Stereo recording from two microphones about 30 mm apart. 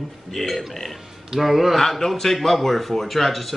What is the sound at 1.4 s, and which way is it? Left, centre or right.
Speech, centre.